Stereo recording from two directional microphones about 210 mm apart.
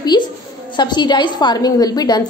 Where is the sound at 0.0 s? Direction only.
20° left (ahead or behind).